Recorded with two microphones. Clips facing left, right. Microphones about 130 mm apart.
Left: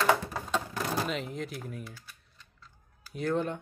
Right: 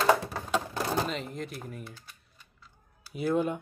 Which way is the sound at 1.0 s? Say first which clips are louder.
Even; centre (ahead or behind).